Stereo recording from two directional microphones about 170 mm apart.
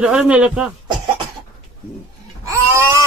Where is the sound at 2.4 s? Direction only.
15° right (ahead or behind).